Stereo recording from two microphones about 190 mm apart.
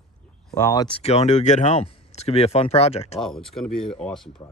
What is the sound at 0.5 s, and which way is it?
Speech, 20° left (ahead or behind).